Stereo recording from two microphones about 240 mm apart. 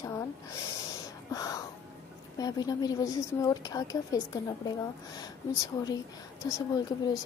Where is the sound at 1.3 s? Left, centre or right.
Centre.